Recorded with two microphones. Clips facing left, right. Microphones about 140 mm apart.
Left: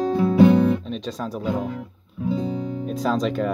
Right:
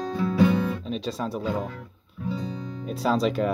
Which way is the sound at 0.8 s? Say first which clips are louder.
Even; centre (ahead or behind).